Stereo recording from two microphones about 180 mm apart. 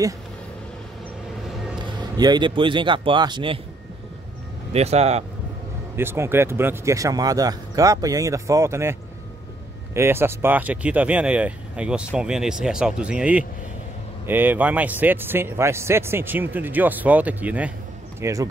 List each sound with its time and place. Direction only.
2.1 s speech: 25° right (ahead or behind)
4.7 s speech: 35° right (ahead or behind)
5.9 s speech: 15° right (ahead or behind)
9.9 s speech: 15° right (ahead or behind)